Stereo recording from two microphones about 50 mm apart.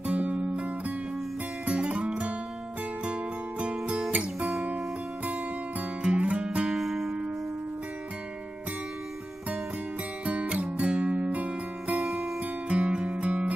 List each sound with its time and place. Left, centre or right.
0.0 s music: right
1.7 s music: right
6.8 s music: centre
10.2 s music: right
12.0 s music: centre